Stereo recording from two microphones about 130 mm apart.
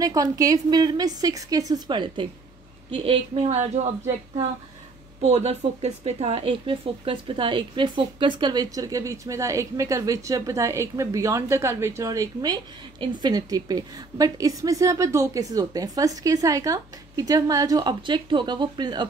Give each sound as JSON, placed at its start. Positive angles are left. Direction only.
{"t": 0.0, "sound": "a woman's voice", "side_deg": -25}
{"t": 2.9, "sound": "a woman's voice", "side_deg": -50}
{"t": 5.2, "sound": "a woman's voice", "side_deg": -55}